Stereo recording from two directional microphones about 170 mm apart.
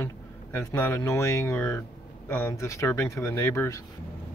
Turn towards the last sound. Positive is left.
turn(degrees=15)  # may be behind; listen again after turning